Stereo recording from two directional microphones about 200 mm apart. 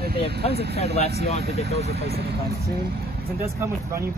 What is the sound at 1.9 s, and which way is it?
Speech, 50° right (ahead or behind).